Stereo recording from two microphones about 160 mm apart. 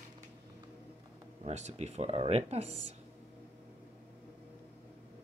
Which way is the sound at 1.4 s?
45° right (ahead or behind).